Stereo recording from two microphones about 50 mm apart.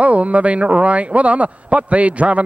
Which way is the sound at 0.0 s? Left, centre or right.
Right.